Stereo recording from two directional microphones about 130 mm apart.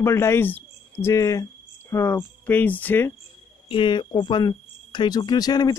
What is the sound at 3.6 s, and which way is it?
Cricket, 40° left (ahead or behind).